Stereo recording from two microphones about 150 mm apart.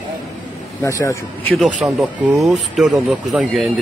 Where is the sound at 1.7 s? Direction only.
Centre (ahead or behind).